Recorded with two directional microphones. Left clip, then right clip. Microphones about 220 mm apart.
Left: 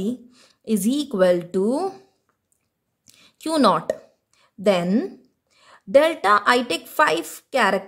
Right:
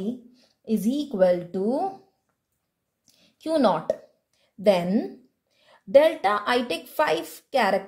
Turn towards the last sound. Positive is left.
turn(degrees=20)  # may be behind; listen again after turning